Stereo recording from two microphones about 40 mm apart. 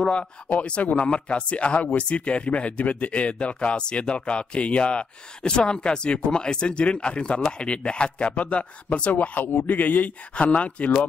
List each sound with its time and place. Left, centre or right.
0.5 s speech: left
9.4 s a man's voice: left
10.3 s speech: left